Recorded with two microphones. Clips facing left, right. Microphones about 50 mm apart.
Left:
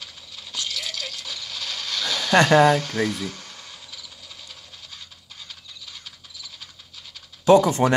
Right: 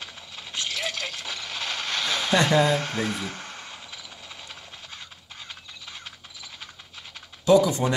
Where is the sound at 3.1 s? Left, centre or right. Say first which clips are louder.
Left 1 dB; right.